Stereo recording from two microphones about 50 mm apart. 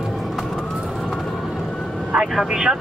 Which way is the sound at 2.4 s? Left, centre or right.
Centre.